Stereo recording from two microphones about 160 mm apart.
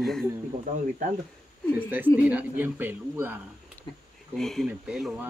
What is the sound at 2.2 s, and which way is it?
Speech, 10° right (ahead or behind).